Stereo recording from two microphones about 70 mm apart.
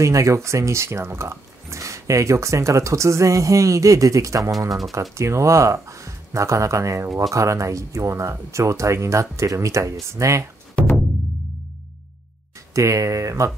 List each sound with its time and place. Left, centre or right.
0.0 s speech: right
5.1 s speech: right
12.7 s speech: right